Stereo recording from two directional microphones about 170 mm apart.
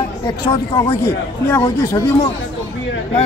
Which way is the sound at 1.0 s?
15° left (ahead or behind).